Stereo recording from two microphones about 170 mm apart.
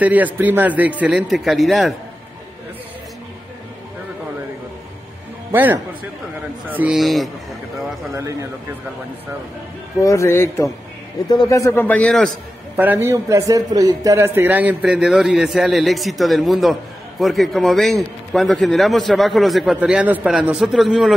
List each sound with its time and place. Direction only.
0.0 s a man's voice: 10° right (ahead or behind)
5.5 s a man's voice: 10° right (ahead or behind)
8.2 s speech: 20° right (ahead or behind)
10.0 s a man's voice: 15° left (ahead or behind)
12.7 s a man's voice: 10° right (ahead or behind)